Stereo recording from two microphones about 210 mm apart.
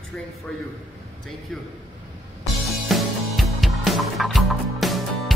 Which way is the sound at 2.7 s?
Centre (ahead or behind).